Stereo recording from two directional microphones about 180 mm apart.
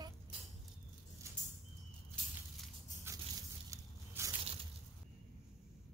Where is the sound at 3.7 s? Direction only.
15° right (ahead or behind).